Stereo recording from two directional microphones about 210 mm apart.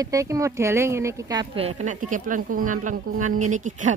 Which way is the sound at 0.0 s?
15° right (ahead or behind).